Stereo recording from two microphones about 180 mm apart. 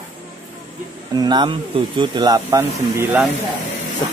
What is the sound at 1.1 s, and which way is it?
Speech, 25° right (ahead or behind).